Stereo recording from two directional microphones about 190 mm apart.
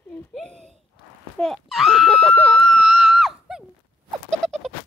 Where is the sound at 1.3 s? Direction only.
Centre (ahead or behind).